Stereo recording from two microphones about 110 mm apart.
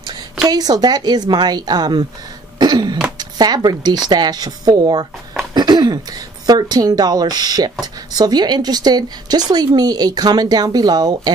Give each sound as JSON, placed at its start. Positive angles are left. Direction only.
{"t": 0.5, "sound": "speech", "side_deg": -35}
{"t": 2.6, "sound": "cough", "side_deg": -40}
{"t": 3.2, "sound": "speech", "side_deg": -40}